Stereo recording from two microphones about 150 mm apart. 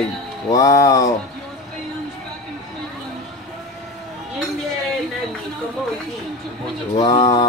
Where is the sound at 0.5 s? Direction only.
25° left (ahead or behind).